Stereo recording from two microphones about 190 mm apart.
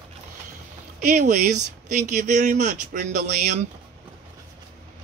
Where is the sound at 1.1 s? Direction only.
40° right (ahead or behind).